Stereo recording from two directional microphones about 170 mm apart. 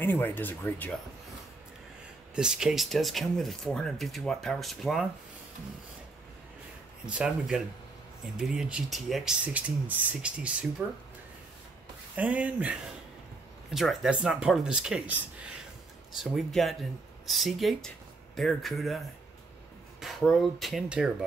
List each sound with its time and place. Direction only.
0.0 s speech: 10° left (ahead or behind)
2.3 s speech: 5° right (ahead or behind)
7.1 s speech: 5° right (ahead or behind)
12.2 s speech: 10° right (ahead or behind)